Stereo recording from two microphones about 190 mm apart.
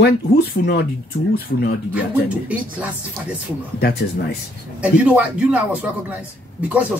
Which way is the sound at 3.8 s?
60° left (ahead or behind).